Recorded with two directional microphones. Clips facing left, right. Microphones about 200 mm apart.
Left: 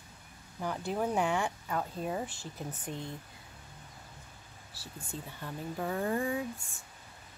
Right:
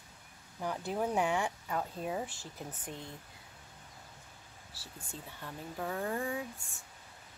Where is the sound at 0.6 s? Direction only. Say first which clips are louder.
Left 1 dB; 10° right (ahead or behind).